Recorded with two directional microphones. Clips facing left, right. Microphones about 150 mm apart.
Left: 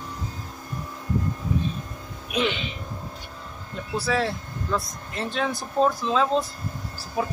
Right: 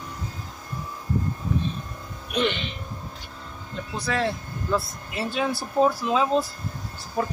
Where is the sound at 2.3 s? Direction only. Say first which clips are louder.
Right 1 dB; 5° left (ahead or behind).